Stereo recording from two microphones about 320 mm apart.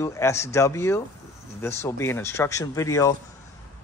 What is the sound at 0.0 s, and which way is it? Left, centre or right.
Speech, centre.